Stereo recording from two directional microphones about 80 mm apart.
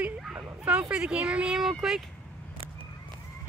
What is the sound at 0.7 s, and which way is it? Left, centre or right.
Speech, centre.